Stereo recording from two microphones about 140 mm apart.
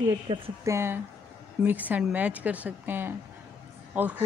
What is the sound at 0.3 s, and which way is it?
Speech, 35° right (ahead or behind).